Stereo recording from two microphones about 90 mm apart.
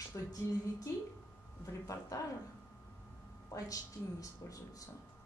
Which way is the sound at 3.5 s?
40° left (ahead or behind).